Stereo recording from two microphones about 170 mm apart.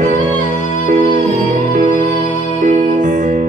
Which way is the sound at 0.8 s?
45° right (ahead or behind).